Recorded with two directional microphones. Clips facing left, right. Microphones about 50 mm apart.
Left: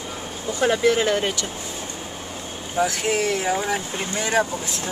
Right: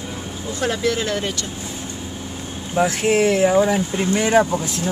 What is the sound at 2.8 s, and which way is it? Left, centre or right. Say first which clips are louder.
Speech: right 5 dB; right.